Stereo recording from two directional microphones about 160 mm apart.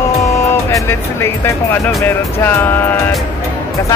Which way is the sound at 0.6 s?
15° left (ahead or behind).